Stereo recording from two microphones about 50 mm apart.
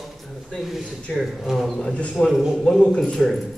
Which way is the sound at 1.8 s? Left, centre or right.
Left.